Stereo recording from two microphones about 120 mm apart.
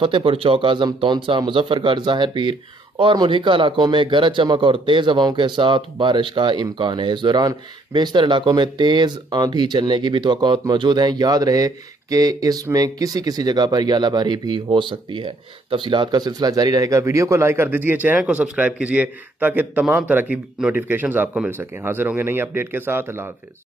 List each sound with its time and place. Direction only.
0.0 s a man's voice: 45° right (ahead or behind); by 23.3 s 20° right (ahead or behind)